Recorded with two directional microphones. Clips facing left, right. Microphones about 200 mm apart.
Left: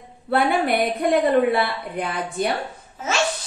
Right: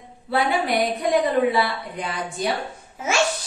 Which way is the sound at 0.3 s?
55° left (ahead or behind).